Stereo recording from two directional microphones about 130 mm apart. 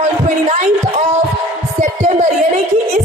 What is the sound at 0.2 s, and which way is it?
Speech, 60° right (ahead or behind).